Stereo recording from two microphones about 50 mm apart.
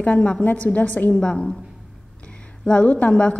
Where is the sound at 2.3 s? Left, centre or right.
Left.